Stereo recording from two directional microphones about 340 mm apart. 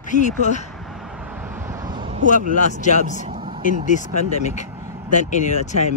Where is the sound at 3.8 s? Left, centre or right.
Left.